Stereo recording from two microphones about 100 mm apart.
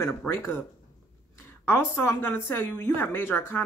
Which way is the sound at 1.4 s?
25° left (ahead or behind).